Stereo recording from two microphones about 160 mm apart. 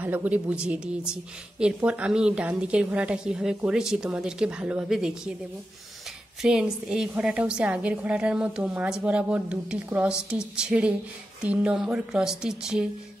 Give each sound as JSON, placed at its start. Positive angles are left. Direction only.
{"t": 0.0, "sound": "a woman's voice", "side_deg": -10}
{"t": 6.4, "sound": "a woman's voice", "side_deg": -5}